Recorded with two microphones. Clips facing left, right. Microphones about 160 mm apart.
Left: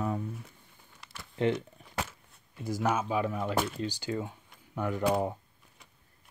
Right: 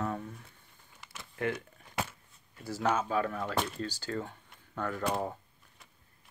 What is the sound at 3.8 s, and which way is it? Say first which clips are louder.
Speech: left 3 dB; 15° left (ahead or behind).